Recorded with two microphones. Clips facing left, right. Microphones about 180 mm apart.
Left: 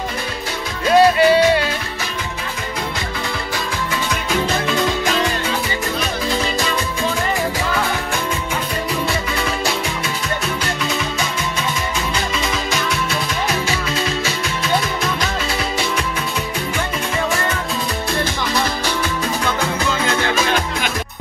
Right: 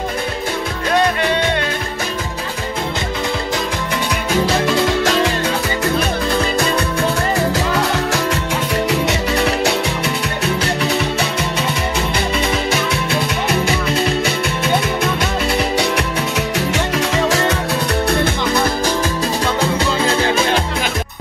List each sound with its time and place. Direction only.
0.9 s music: 5° left (ahead or behind)
7.0 s music: 75° right (ahead or behind)
13.1 s music: 60° right (ahead or behind)
15.8 s music: 70° right (ahead or behind)
18.0 s music: 60° right (ahead or behind)
19.4 s music: 30° right (ahead or behind)